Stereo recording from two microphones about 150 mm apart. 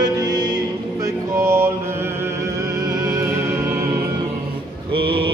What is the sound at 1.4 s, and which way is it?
Mantra, 15° right (ahead or behind).